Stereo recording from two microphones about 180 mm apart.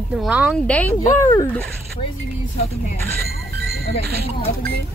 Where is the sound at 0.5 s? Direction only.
5° left (ahead or behind).